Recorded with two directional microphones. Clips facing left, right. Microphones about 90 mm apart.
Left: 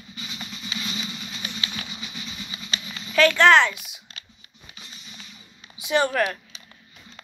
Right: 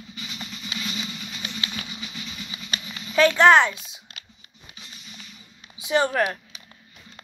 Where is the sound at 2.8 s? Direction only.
15° right (ahead or behind).